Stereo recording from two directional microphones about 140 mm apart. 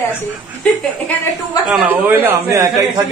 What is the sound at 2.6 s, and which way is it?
Speech, 25° right (ahead or behind).